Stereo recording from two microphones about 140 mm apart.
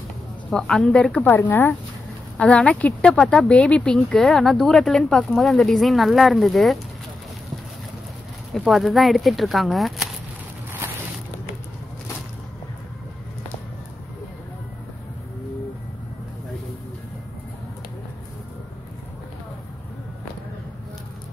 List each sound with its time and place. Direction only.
0.5 s a woman's voice: 5° left (ahead or behind)
8.5 s speech: centre (ahead or behind)